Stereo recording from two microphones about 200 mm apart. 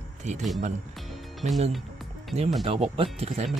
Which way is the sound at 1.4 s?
35° right (ahead or behind).